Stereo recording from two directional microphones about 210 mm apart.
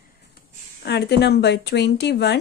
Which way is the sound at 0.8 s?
50° left (ahead or behind).